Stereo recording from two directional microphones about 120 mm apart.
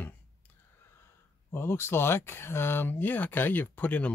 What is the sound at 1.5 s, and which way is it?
Speech, 20° left (ahead or behind).